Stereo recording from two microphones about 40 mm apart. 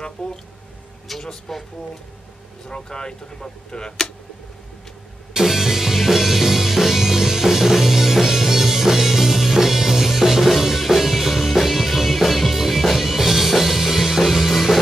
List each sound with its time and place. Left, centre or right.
0.2 s speech: left
1.2 s speech: centre
2.7 s speech: left
5.3 s music: centre